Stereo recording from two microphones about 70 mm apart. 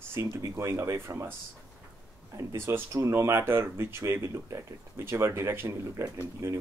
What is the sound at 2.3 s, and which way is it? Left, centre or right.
Speech, right.